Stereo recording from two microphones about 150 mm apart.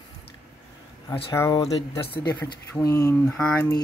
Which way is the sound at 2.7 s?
20° left (ahead or behind).